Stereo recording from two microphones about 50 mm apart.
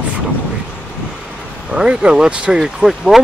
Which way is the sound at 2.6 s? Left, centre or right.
Centre.